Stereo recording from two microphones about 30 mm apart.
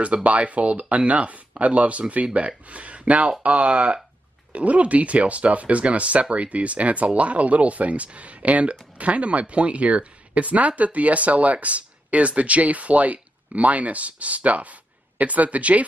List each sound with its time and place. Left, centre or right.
0.0 s speech: right